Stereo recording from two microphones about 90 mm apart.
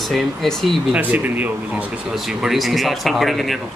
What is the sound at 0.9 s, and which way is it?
Speech, 20° right (ahead or behind).